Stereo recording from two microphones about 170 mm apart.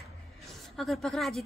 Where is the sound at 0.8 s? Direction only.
Centre (ahead or behind).